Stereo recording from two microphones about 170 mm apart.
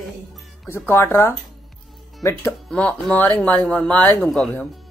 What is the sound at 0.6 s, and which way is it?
Speech, 15° left (ahead or behind).